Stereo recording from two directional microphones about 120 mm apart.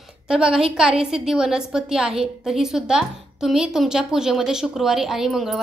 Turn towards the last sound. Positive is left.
turn(degrees=-5)  # may be behind; listen again after turning